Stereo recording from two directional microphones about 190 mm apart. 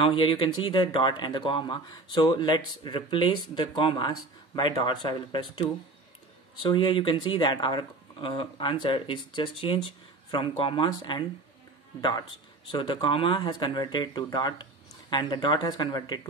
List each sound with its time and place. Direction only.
0.0 s speech: 25° left (ahead or behind)